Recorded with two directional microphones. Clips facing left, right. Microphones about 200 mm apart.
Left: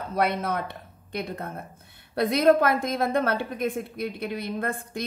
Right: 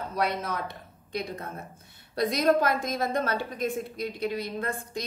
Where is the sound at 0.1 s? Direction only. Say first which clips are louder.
Left 5 dB; 55° left (ahead or behind).